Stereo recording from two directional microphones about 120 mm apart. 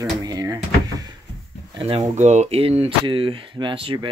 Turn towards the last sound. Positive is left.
turn(degrees=-45)  # may be behind; listen again after turning